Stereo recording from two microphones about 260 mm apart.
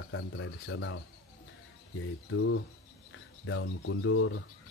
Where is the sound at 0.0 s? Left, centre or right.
Left.